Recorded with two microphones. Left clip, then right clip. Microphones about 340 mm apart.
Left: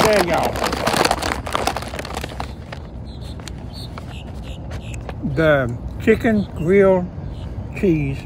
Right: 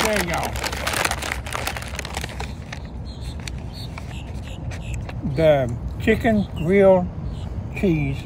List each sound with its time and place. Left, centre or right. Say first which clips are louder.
0.0 s crumpling: left 6 dB; left
5.3 s speech: left 1 dB; centre